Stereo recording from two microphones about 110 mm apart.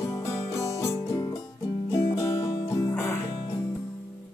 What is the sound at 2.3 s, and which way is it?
Music, 30° left (ahead or behind).